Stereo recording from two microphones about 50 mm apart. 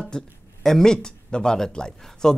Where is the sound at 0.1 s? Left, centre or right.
Centre.